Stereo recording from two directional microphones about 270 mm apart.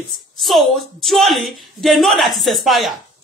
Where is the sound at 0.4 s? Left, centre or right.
Centre.